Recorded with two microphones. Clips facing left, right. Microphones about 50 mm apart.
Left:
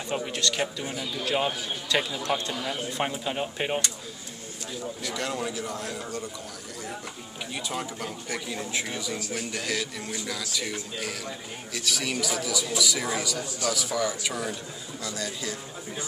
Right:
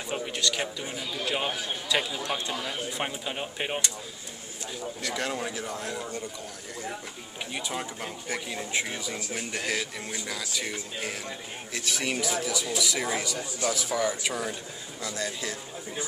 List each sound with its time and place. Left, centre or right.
0.1 s a man's voice: centre
5.1 s a man's voice: centre
7.6 s a man's voice: right
15.1 s speech: right